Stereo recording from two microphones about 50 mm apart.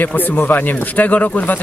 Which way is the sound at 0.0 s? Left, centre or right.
Left.